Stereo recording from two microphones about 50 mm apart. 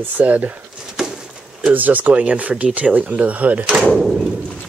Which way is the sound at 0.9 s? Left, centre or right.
Centre.